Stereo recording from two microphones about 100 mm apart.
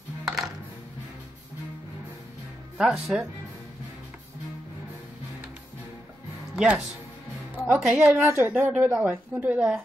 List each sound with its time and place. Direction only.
0.2 s music: 5° right (ahead or behind)
2.8 s speech: 5° right (ahead or behind)
6.5 s a woman's voice: 15° right (ahead or behind)
7.9 s speech: 15° right (ahead or behind)